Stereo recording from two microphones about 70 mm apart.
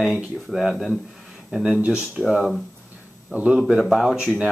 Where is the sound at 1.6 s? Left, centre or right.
Centre.